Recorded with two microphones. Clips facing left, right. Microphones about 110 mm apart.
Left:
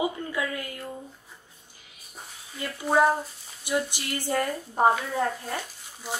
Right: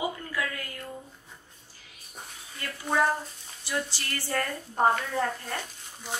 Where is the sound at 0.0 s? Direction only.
20° left (ahead or behind).